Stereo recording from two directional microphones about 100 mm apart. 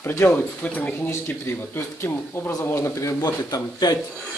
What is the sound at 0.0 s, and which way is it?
Speech, 25° left (ahead or behind).